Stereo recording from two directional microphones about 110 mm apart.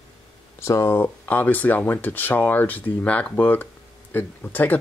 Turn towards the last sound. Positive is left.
turn(degrees=15)  # may be behind; listen again after turning